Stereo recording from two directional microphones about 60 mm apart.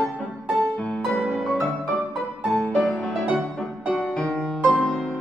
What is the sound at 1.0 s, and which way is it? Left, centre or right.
Music, centre.